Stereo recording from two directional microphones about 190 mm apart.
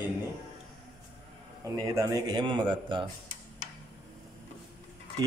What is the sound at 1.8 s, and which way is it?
A man's voice, 15° right (ahead or behind).